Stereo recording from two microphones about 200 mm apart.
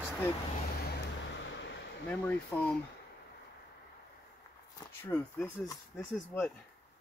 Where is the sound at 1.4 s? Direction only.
60° left (ahead or behind).